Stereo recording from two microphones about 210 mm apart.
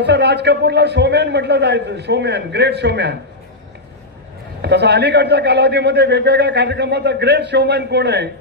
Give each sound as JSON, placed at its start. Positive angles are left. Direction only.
{"t": 0.0, "sound": "a man's voice", "side_deg": -55}
{"t": 4.6, "sound": "a man's voice", "side_deg": -55}